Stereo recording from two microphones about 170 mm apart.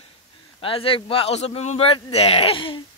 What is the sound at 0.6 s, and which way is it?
A man's voice, 30° left (ahead or behind).